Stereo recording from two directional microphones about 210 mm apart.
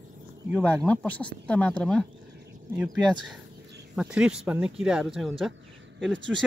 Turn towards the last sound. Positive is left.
turn(degrees=-60)  # may be behind; listen again after turning